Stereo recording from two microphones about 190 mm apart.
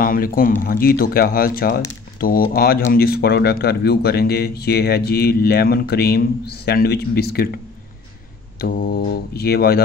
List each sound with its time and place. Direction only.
0.0 s a man's voice: 50° left (ahead or behind)